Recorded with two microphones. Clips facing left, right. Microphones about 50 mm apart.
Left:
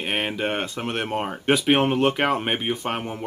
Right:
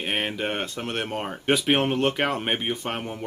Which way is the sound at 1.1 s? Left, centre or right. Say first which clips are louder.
Left 3 dB; centre.